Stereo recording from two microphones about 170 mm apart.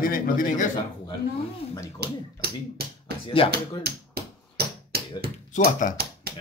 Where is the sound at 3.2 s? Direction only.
30° left (ahead or behind).